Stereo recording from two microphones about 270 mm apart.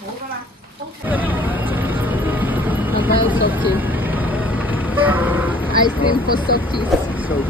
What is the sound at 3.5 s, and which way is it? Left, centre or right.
Vehicle, centre.